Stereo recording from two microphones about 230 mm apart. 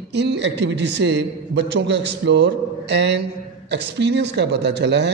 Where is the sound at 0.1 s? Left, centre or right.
Right.